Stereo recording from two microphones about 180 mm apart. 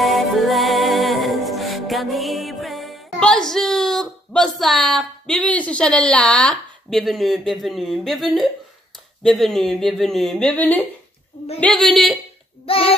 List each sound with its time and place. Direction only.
0.0 s music: centre (ahead or behind)
4.6 s a woman's voice: centre (ahead or behind)
12.6 s child singing: 30° left (ahead or behind)